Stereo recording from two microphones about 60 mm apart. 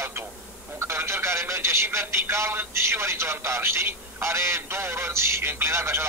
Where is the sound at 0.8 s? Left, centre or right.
Right.